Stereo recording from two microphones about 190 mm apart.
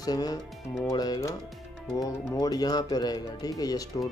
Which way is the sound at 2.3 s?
20° left (ahead or behind).